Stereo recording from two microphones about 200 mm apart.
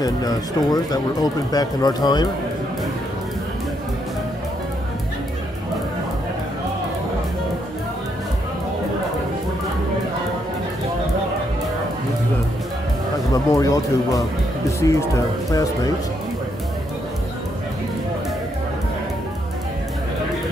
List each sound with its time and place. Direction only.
0.0 s speech: 20° left (ahead or behind)
13.3 s speech: 15° left (ahead or behind)